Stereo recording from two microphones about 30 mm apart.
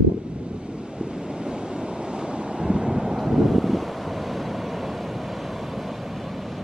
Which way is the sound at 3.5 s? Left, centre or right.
Centre.